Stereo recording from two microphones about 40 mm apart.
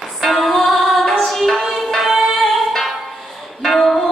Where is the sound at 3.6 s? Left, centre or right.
Centre.